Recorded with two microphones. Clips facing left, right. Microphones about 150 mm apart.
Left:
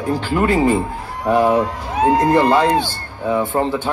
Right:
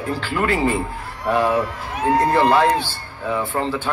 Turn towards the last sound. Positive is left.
turn(degrees=20)  # may be behind; listen again after turning